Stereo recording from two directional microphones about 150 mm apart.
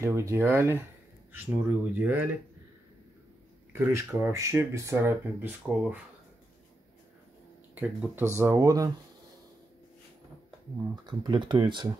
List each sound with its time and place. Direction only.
0.0 s speech: 20° right (ahead or behind)
3.7 s speech: 15° right (ahead or behind)
7.7 s speech: 10° right (ahead or behind)
11.1 s speech: 30° right (ahead or behind)